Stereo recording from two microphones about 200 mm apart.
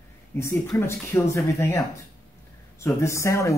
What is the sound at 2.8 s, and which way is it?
Speech, 15° left (ahead or behind).